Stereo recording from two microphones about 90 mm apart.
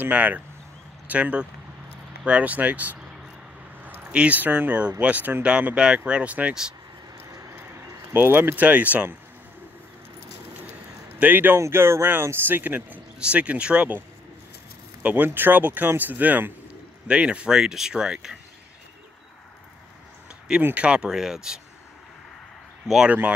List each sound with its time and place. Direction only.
0.0 s speech: 15° right (ahead or behind)
8.1 s speech: 25° right (ahead or behind)
11.1 s speech: 20° right (ahead or behind)
15.0 s speech: 20° right (ahead or behind)
20.6 s speech: 15° right (ahead or behind)
22.8 s speech: 5° right (ahead or behind)